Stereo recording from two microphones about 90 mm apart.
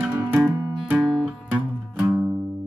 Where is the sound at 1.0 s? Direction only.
Centre (ahead or behind).